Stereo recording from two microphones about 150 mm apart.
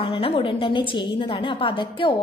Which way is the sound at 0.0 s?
35° left (ahead or behind).